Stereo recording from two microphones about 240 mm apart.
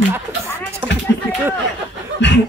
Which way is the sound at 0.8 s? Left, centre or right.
Centre.